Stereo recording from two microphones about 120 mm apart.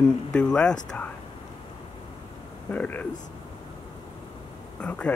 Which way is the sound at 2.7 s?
15° left (ahead or behind).